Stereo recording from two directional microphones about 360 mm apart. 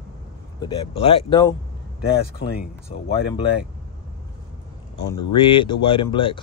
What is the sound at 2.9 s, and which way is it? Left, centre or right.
Speech, centre.